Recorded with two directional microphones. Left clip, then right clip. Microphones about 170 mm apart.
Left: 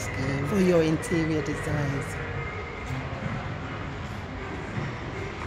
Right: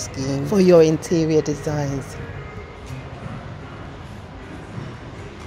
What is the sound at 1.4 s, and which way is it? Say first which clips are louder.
Speech: right 5 dB; 5° right (ahead or behind).